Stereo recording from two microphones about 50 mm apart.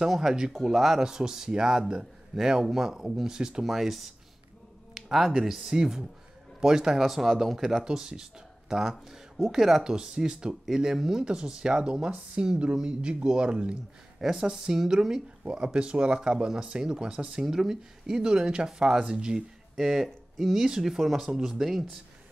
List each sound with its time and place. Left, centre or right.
0.0 s speech: centre
3.6 s speech: centre
10.6 s speech: centre
14.2 s speech: centre
19.7 s speech: centre